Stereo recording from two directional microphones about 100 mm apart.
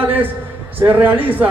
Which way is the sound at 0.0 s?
20° right (ahead or behind).